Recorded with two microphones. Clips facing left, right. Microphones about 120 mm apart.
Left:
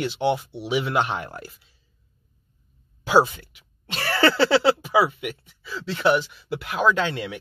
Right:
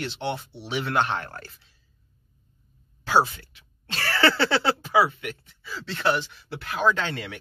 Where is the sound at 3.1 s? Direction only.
15° left (ahead or behind).